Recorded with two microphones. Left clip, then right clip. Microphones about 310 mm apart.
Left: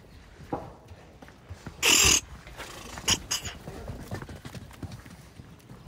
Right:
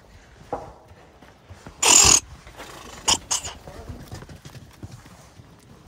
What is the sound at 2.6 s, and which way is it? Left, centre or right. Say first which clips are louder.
Dog: right 2 dB; right.